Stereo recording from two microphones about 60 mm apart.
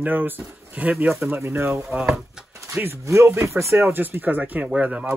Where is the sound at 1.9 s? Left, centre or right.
Centre.